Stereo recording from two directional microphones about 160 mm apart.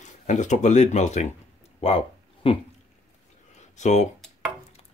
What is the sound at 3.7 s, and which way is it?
Speech, 45° left (ahead or behind).